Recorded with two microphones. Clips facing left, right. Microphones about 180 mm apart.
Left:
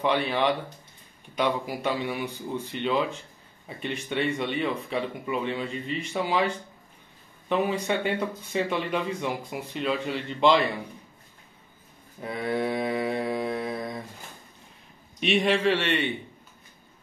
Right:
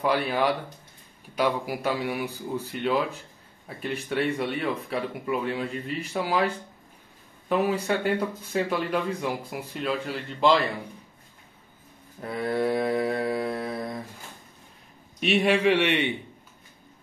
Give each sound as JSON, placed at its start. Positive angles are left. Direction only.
{"t": 0.0, "sound": "speech", "side_deg": -5}
{"t": 12.2, "sound": "mantra", "side_deg": 0}
{"t": 15.1, "sound": "a man's voice", "side_deg": -5}